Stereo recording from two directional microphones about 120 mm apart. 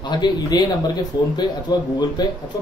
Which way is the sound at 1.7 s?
35° left (ahead or behind).